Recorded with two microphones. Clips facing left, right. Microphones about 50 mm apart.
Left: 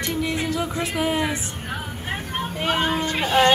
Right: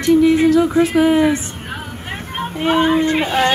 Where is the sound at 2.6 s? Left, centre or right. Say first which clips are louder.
Right 8 dB; centre.